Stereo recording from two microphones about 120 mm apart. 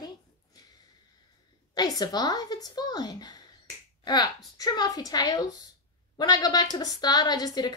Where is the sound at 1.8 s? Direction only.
35° left (ahead or behind).